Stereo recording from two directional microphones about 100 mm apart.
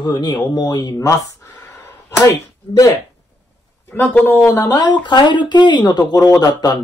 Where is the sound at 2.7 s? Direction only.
35° left (ahead or behind).